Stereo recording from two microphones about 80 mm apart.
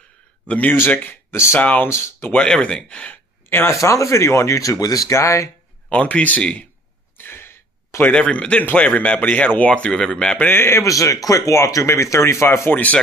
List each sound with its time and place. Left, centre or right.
0.5 s speech: centre
1.9 s speech: left
2.3 s speech: centre
3.4 s speech: left
3.7 s speech: left
5.9 s speech: centre
7.2 s a sound: left
8.1 s speech: centre; by 12.8 s left